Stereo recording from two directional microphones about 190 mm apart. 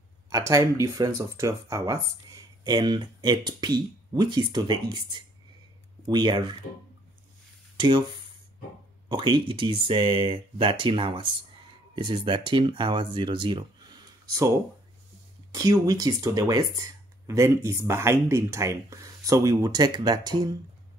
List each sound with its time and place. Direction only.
0.3 s speech: 15° right (ahead or behind)
7.7 s speech: 25° right (ahead or behind)
15.5 s speech: 20° right (ahead or behind)